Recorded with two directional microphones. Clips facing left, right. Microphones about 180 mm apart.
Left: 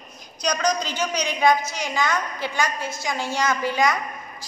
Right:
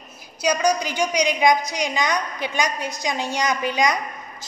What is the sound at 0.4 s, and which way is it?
A woman's voice, 10° right (ahead or behind).